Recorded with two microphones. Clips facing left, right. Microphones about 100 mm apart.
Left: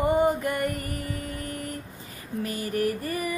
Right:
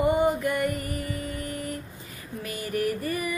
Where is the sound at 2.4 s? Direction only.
35° left (ahead or behind).